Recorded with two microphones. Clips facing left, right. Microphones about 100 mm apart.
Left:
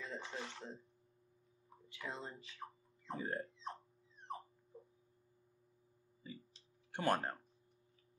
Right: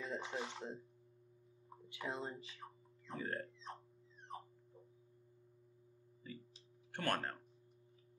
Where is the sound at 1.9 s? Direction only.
25° right (ahead or behind).